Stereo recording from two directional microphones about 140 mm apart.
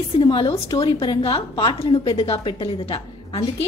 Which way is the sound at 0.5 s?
25° left (ahead or behind).